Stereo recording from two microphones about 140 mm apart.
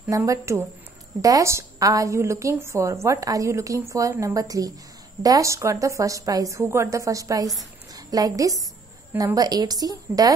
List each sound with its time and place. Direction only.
0.1 s a woman's voice: 20° right (ahead or behind)